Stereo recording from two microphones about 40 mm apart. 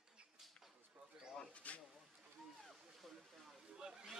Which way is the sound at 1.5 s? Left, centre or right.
Left.